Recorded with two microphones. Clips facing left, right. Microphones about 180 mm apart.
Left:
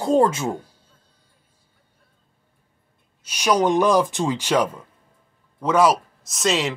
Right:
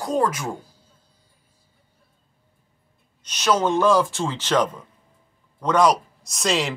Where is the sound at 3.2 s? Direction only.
10° left (ahead or behind).